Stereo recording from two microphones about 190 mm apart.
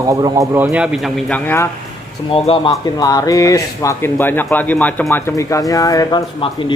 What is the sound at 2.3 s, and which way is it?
A man's voice, 30° left (ahead or behind).